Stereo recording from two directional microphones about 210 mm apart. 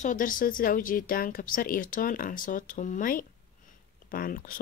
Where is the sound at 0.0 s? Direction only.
40° left (ahead or behind).